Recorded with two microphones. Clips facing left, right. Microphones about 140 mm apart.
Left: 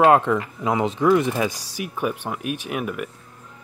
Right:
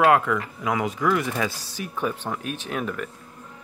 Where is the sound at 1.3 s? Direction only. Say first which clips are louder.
Left 3 dB; 15° left (ahead or behind).